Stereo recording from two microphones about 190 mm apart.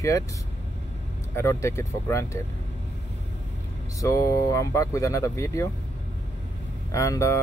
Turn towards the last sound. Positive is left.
turn(degrees=15)  # may be behind; listen again after turning